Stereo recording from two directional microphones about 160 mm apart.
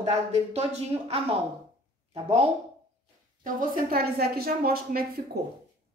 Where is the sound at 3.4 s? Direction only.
65° right (ahead or behind).